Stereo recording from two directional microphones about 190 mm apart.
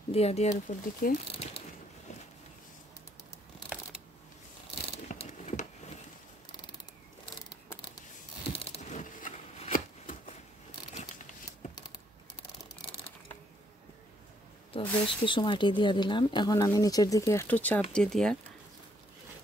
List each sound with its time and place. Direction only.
0.1 s speech: 35° left (ahead or behind)
4.9 s ratchet: 30° left (ahead or behind)
8.5 s a sound: 30° left (ahead or behind)
14.7 s speech: 25° left (ahead or behind); by 18.4 s 5° left (ahead or behind)